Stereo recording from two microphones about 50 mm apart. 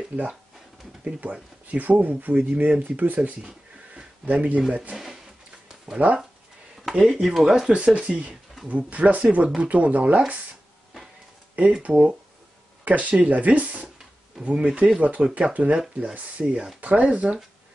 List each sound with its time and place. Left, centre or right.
0.1 s speech: right
3.4 s a sound: right
4.9 s a sound: centre
6.0 s speech: right
7.2 s speech: centre
7.7 s speech: right
11.8 s speech: right